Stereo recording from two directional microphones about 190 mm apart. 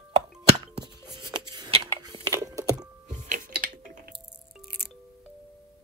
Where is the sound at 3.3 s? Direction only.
40° right (ahead or behind).